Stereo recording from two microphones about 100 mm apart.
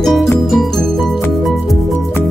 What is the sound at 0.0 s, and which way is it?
Music, centre (ahead or behind).